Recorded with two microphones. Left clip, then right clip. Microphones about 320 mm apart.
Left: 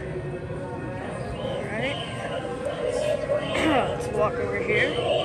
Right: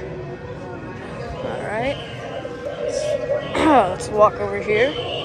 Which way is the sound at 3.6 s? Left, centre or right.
Centre.